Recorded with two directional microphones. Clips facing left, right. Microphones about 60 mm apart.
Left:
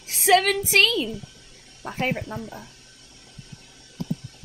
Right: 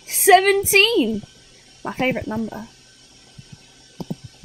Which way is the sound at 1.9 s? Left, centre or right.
Right.